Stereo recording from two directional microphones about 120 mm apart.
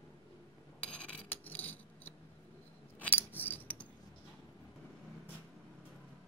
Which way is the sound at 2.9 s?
15° left (ahead or behind).